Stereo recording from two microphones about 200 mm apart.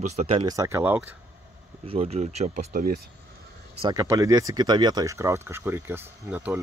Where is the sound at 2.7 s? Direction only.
45° right (ahead or behind).